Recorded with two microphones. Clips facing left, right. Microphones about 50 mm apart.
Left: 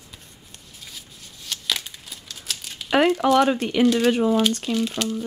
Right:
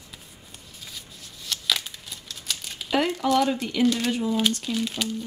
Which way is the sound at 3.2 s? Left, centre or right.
Left.